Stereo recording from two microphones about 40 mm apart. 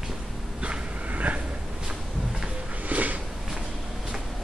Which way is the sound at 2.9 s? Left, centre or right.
Right.